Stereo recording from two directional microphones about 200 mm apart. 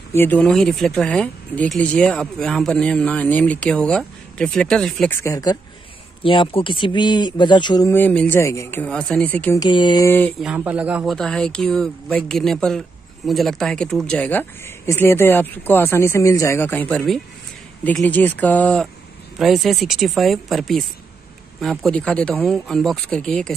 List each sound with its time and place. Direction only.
0.1 s speech: 10° left (ahead or behind)
9.6 s speech: 25° left (ahead or behind)
10.4 s speech: 5° right (ahead or behind)